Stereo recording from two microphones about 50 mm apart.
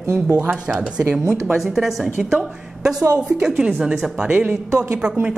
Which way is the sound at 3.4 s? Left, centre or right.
Centre.